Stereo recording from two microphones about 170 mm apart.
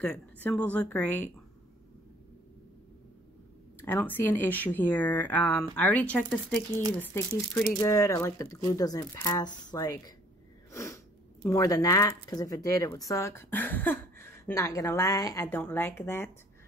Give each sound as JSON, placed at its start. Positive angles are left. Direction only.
{"t": 0.0, "sound": "speech", "side_deg": 10}
{"t": 3.8, "sound": "speech", "side_deg": 10}
{"t": 7.8, "sound": "speech", "side_deg": 20}
{"t": 10.7, "sound": "sneeze", "side_deg": 15}
{"t": 11.4, "sound": "speech", "side_deg": 20}